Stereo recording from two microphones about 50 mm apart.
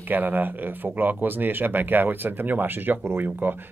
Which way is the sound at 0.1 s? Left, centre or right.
Right.